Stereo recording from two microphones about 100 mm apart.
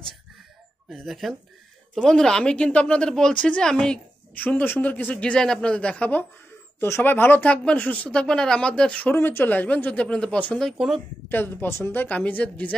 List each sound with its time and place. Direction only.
0.8 s speech: centre (ahead or behind)
11.2 s speech: 20° left (ahead or behind)